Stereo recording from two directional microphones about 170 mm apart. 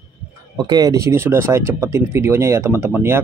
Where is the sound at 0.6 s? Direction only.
20° right (ahead or behind).